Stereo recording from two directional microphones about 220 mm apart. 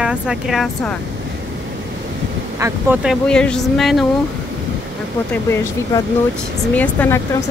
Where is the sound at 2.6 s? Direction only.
5° right (ahead or behind).